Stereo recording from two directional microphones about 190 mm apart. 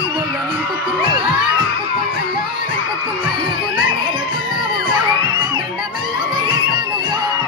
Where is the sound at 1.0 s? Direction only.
25° right (ahead or behind).